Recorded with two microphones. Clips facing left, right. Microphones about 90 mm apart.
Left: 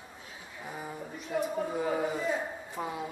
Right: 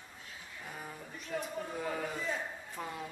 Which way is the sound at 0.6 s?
15° left (ahead or behind).